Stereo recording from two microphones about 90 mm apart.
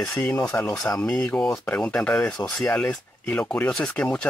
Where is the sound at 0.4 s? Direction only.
15° left (ahead or behind).